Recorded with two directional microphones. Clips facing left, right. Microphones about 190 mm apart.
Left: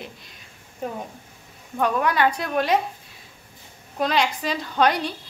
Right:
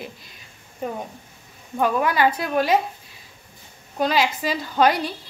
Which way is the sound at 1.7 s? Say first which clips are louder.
Right 1 dB; 5° right (ahead or behind).